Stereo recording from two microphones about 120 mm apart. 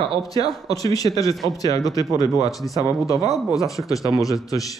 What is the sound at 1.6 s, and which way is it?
Speech, 30° left (ahead or behind).